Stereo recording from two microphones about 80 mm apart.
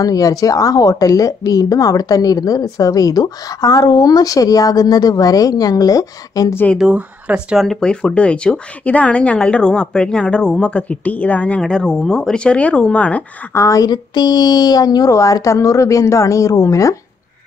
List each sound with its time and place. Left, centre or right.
0.0 s a woman's voice: left
6.8 s speech: centre
7.5 s speech: centre
7.8 s speech: centre
13.5 s a woman's voice: left
13.7 s a woman's voice: left